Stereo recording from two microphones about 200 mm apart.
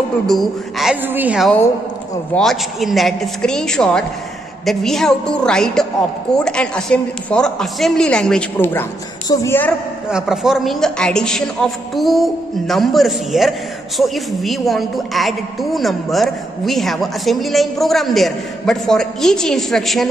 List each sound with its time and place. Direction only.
0.3 s a man's voice: centre (ahead or behind)
10.0 s a man's voice: 5° right (ahead or behind)